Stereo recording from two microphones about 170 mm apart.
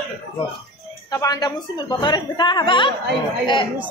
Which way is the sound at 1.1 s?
20° left (ahead or behind).